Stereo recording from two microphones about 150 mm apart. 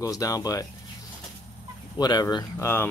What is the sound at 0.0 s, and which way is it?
Speech, 25° left (ahead or behind).